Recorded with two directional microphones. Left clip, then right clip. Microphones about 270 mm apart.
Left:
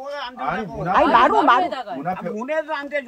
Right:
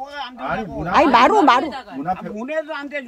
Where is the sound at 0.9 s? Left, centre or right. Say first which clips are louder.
Right 2 dB; right.